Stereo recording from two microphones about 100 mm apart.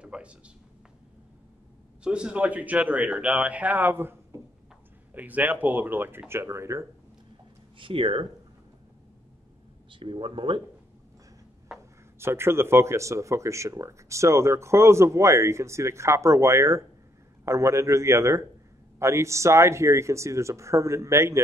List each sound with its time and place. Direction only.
0.0 s a sound: 10° right (ahead or behind)
2.0 s a man's voice: 10° right (ahead or behind); by 6.9 s 30° right (ahead or behind)
7.8 s speech: 65° right (ahead or behind)
9.9 s speech: 55° right (ahead or behind)
11.7 s a sound: 5° right (ahead or behind)
12.2 s speech: 25° right (ahead or behind)